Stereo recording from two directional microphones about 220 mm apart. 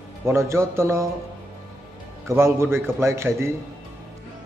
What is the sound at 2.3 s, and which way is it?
Speech, 10° right (ahead or behind).